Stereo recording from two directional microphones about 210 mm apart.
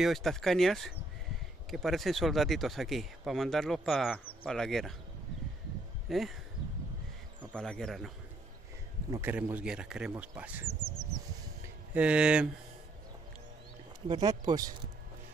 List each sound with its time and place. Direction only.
0.0 s speech: centre (ahead or behind)
6.0 s speech: centre (ahead or behind)
7.5 s speech: 5° left (ahead or behind)
9.1 s speech: 10° right (ahead or behind)
11.9 s speech: 5° right (ahead or behind)
14.0 s speech: 20° right (ahead or behind)